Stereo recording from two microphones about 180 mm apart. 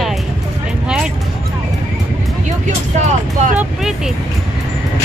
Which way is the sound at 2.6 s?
40° right (ahead or behind).